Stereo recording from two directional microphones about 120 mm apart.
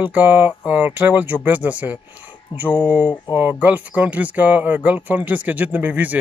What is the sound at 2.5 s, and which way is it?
Speech, 45° left (ahead or behind).